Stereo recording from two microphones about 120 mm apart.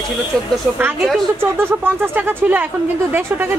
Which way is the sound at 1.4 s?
15° right (ahead or behind).